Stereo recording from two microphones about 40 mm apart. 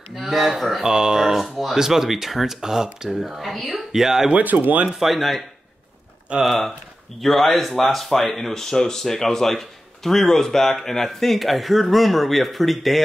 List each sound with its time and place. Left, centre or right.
0.1 s speech: centre
0.9 s a sound: centre
1.6 s speech: centre
3.1 s speech: centre
4.3 s speech: right
4.8 s speech: centre
6.4 s speech: centre